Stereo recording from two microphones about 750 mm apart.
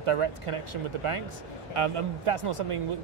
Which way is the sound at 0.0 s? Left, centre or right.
Right.